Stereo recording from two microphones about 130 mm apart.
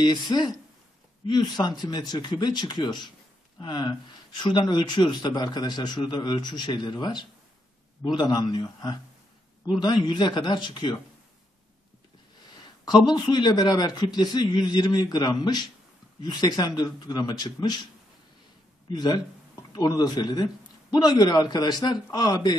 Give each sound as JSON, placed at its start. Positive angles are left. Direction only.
{"t": 0.0, "sound": "a man's voice", "side_deg": 30}
{"t": 12.8, "sound": "a man's voice", "side_deg": 35}
{"t": 18.9, "sound": "a man's voice", "side_deg": 35}